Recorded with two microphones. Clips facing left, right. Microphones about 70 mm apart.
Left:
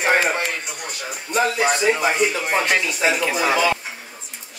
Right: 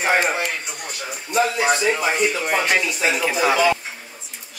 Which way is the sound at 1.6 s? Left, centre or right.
Centre.